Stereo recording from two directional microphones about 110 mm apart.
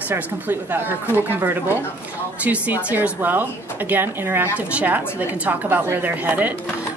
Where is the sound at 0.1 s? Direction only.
20° right (ahead or behind).